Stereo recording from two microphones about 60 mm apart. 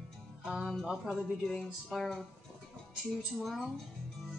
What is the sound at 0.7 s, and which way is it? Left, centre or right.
Speech, centre.